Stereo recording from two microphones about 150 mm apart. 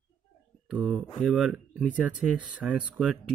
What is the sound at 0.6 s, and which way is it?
Speech, 5° right (ahead or behind).